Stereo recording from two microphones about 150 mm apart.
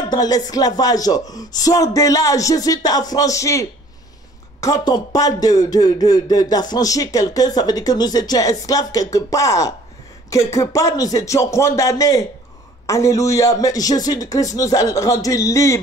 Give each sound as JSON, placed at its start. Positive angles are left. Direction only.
{"t": 0.1, "sound": "speech", "side_deg": 25}